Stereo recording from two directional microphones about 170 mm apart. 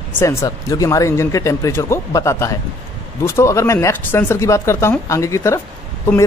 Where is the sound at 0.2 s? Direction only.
15° left (ahead or behind).